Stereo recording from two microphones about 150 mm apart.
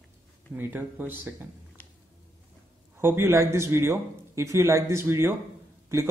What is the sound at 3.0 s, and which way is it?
A man's voice, 15° right (ahead or behind).